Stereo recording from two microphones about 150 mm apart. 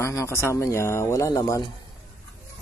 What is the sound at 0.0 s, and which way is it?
Speech, 20° left (ahead or behind).